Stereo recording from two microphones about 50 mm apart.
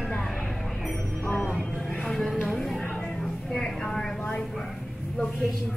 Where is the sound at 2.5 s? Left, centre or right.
Centre.